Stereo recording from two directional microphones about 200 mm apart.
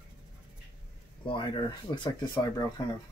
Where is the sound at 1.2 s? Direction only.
25° left (ahead or behind).